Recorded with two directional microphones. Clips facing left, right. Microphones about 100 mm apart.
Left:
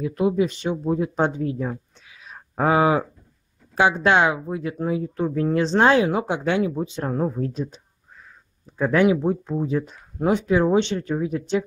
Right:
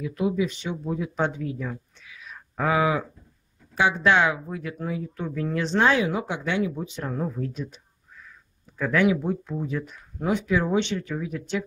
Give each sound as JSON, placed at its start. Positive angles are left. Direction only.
{"t": 0.0, "sound": "speech", "side_deg": 40}
{"t": 4.1, "sound": "speech", "side_deg": 25}
{"t": 6.7, "sound": "speech", "side_deg": 35}